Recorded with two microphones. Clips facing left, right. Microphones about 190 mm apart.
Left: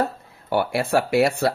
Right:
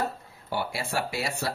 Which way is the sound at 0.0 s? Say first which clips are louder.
Left 6 dB; 60° left (ahead or behind).